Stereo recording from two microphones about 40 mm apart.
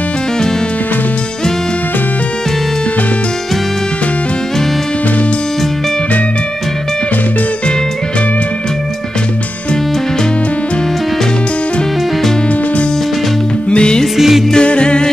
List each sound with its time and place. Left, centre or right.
13.7 s music: left
14.1 s music: centre
14.5 s a capella: left